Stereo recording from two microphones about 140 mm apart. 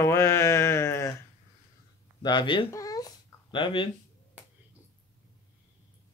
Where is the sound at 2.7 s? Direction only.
25° left (ahead or behind).